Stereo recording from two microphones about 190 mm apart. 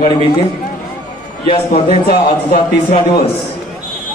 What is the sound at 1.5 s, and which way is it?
Speech, 35° left (ahead or behind).